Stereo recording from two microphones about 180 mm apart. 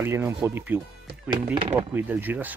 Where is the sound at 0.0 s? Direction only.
15° right (ahead or behind).